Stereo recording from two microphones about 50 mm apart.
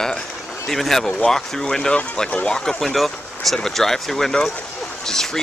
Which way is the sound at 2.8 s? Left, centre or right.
Centre.